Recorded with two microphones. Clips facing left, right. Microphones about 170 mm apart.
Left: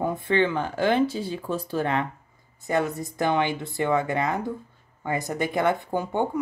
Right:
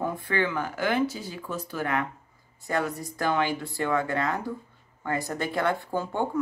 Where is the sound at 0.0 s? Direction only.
25° left (ahead or behind).